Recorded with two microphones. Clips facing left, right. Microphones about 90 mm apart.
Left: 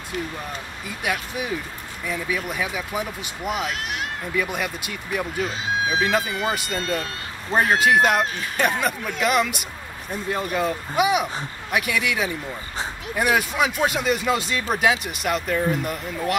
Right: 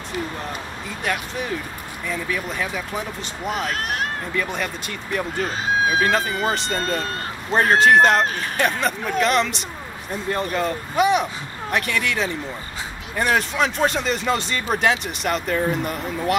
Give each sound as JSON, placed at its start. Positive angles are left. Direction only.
{"t": 0.8, "sound": "speech", "side_deg": 10}
{"t": 3.6, "sound": "speech", "side_deg": -40}
{"t": 4.4, "sound": "speech", "side_deg": 10}
{"t": 5.4, "sound": "speech", "side_deg": -45}
{"t": 5.9, "sound": "speech", "side_deg": 10}
{"t": 6.7, "sound": "speech", "side_deg": -40}
{"t": 7.8, "sound": "speech", "side_deg": 5}